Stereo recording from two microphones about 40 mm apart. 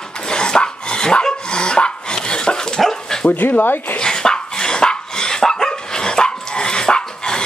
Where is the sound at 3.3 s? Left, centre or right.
Left.